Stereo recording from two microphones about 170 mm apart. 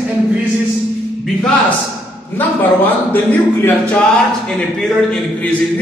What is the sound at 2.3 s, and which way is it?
A man's voice, 10° left (ahead or behind).